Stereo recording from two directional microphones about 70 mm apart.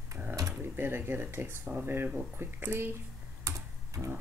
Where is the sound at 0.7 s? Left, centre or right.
Right.